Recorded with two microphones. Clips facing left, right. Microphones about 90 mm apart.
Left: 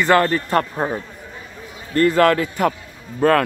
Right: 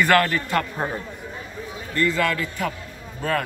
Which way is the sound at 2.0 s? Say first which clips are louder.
Left 8 dB; 50° left (ahead or behind).